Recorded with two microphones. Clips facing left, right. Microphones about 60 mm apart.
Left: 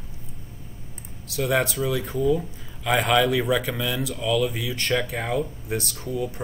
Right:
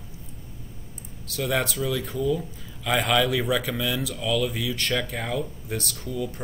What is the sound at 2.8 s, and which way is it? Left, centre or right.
Speech, centre.